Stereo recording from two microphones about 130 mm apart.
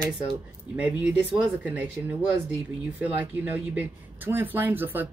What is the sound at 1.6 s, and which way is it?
Speech, 15° right (ahead or behind).